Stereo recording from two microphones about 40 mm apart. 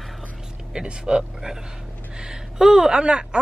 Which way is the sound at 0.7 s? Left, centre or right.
Right.